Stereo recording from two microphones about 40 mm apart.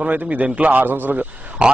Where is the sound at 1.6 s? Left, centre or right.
Right.